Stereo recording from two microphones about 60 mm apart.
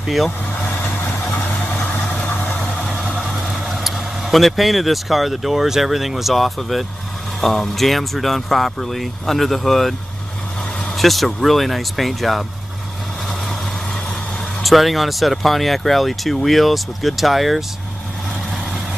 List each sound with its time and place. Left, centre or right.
2.1 s vehicle: centre
2.9 s speech: centre
11.0 s speech: centre
14.6 s speech: centre